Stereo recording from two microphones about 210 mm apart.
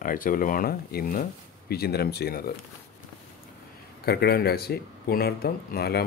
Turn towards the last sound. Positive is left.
turn(degrees=50)  # may be behind; listen again after turning